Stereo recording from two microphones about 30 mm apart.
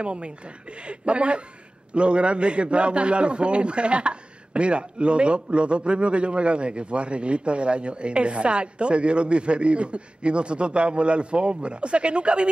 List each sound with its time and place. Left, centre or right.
0.0 s a man's voice: right